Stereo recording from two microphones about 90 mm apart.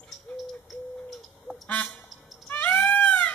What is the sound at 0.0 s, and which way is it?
Bird, 5° left (ahead or behind).